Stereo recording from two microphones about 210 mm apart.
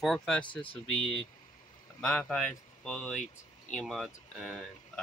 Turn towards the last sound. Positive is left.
turn(degrees=0)  # may be behind; listen again after turning